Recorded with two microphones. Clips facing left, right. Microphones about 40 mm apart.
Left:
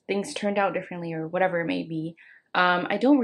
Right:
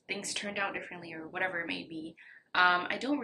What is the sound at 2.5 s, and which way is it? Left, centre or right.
Speech, centre.